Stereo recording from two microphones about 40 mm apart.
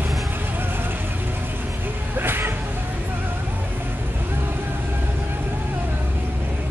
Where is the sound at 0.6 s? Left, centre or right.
Right.